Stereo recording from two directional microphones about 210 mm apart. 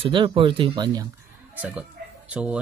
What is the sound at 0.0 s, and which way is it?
Speech, 25° right (ahead or behind).